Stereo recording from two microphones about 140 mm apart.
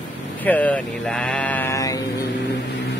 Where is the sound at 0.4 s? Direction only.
10° left (ahead or behind).